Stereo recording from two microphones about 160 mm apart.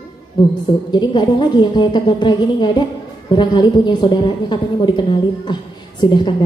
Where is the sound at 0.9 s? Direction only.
30° left (ahead or behind).